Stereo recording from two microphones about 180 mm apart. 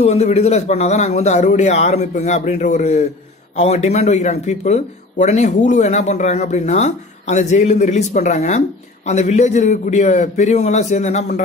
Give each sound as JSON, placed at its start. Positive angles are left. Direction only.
{"t": 0.0, "sound": "speech", "side_deg": 35}